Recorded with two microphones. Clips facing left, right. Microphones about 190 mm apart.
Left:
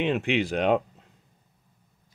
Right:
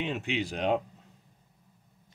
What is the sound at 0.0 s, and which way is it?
Speech, 70° left (ahead or behind).